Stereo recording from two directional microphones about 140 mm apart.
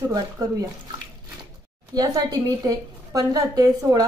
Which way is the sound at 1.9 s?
25° right (ahead or behind).